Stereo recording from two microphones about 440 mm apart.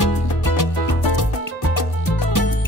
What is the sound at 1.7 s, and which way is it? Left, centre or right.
Music, left.